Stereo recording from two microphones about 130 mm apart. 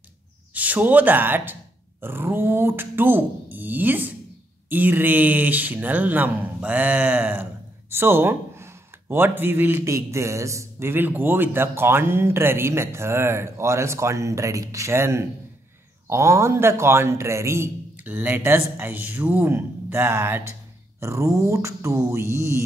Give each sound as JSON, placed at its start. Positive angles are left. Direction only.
{"t": 0.6, "sound": "speech", "side_deg": -10}